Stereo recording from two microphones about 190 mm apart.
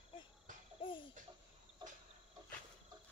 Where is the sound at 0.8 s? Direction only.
25° left (ahead or behind).